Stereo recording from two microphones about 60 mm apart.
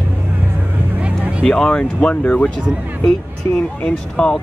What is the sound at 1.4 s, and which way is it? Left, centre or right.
Speech, centre.